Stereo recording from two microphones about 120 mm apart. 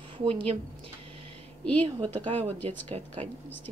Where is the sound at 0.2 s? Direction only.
50° right (ahead or behind).